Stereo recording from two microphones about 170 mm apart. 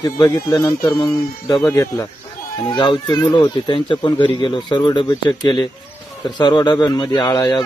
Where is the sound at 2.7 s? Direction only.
30° left (ahead or behind).